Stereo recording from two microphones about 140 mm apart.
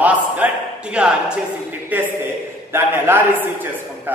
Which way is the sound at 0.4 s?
10° right (ahead or behind).